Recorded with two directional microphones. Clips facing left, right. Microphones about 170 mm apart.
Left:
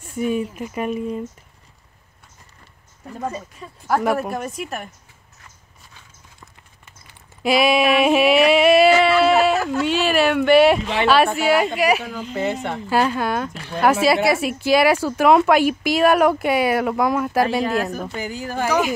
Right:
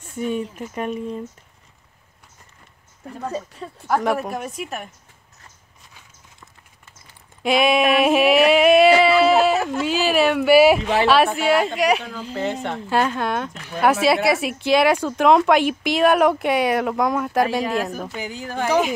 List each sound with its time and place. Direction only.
0.0 s speech: 10° left (ahead or behind)
3.3 s speech: 65° right (ahead or behind)
3.8 s speech: 5° left (ahead or behind)
7.4 s speech: 5° left (ahead or behind)